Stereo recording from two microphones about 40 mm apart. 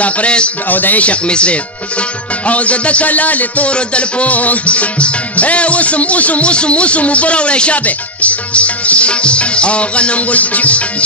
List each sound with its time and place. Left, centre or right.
0.0 s speech: left
0.7 s a man's voice: left
1.0 s speech: left
2.4 s music: left